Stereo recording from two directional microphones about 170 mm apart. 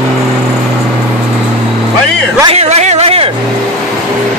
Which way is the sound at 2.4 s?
40° right (ahead or behind).